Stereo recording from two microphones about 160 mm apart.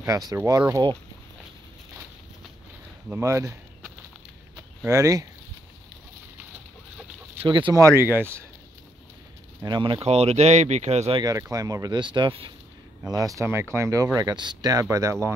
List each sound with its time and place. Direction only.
0.0 s speech: 20° right (ahead or behind)
3.1 s speech: 15° right (ahead or behind)
4.6 s a sound: 20° right (ahead or behind)
7.4 s speech: 30° right (ahead or behind)
7.8 s speech: 15° right (ahead or behind)
9.6 s speech: 30° right (ahead or behind)
10.0 s speech: 40° right (ahead or behind)
11.2 s speech: 20° right (ahead or behind)
13.1 s speech: 20° right (ahead or behind)